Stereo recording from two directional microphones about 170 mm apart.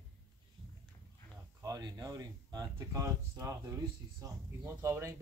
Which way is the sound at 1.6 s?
20° right (ahead or behind).